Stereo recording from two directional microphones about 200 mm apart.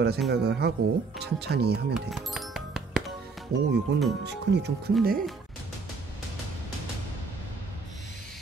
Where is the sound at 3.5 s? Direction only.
90° right.